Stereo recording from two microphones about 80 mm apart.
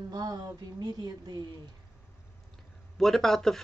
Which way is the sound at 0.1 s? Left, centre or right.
Right.